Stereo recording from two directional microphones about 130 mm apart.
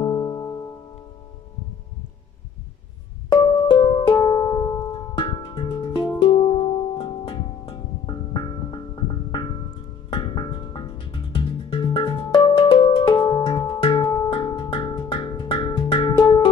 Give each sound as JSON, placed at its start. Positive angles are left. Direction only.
{"t": 0.0, "sound": "music", "side_deg": 30}
{"t": 3.3, "sound": "music", "side_deg": 40}